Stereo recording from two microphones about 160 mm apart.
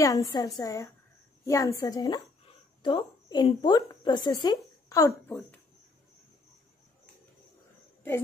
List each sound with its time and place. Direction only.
0.0 s a woman's voice: 20° left (ahead or behind)